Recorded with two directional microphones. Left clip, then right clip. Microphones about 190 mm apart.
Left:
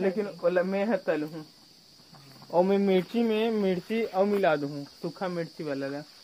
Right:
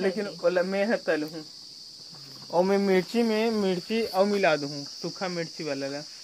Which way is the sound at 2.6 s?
5° right (ahead or behind).